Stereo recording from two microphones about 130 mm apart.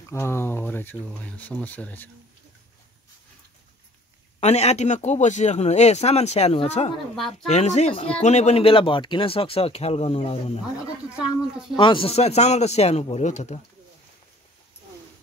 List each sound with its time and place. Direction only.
0.1 s speech: 20° left (ahead or behind)
4.4 s speech: 60° left (ahead or behind)
7.2 s speech: centre (ahead or behind)
7.4 s speech: 60° left (ahead or behind)
11.1 s speech: 5° right (ahead or behind)
11.7 s speech: 35° left (ahead or behind); by 13.6 s 60° left (ahead or behind)